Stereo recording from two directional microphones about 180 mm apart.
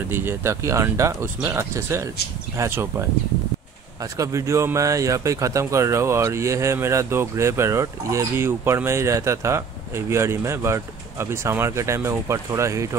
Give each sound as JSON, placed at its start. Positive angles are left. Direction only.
{"t": 0.1, "sound": "speech", "side_deg": -10}
{"t": 4.0, "sound": "speech", "side_deg": -20}